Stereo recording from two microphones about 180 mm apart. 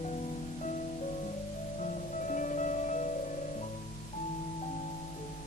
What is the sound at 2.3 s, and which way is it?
Music, 45° left (ahead or behind).